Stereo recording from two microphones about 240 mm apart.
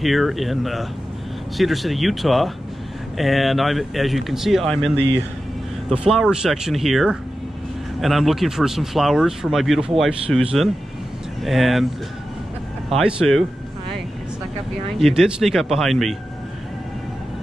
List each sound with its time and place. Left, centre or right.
0.0 s speech: centre
12.9 s speech: centre
15.0 s speech: centre